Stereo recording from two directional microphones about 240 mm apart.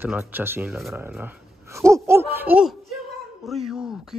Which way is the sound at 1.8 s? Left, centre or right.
Centre.